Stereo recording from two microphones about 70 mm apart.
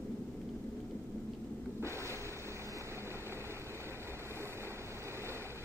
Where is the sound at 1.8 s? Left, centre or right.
Right.